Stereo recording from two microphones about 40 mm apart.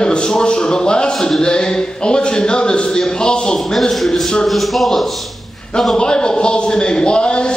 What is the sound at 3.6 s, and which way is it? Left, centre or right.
A man's voice, centre.